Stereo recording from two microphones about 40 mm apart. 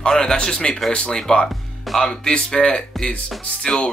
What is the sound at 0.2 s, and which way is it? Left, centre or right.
Speech, centre.